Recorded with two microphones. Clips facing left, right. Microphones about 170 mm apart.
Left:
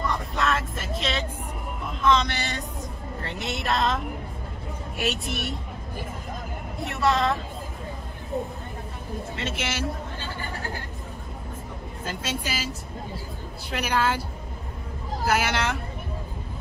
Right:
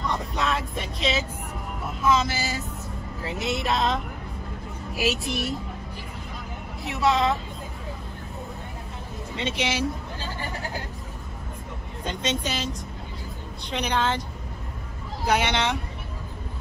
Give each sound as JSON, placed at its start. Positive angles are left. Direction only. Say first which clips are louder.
{"t": 0.0, "sound": "vehicle", "louder": "left 1 dB", "side_deg": 0}
{"t": 1.9, "sound": "speech", "louder": "even", "side_deg": -5}
{"t": 6.8, "sound": "speech", "louder": "right 1 dB", "side_deg": 0}
{"t": 9.3, "sound": "speech", "louder": "right 5 dB", "side_deg": 0}
{"t": 12.0, "sound": "a woman's voice", "louder": "right 4 dB", "side_deg": 5}
{"t": 15.2, "sound": "speech", "louder": "right 1 dB", "side_deg": 5}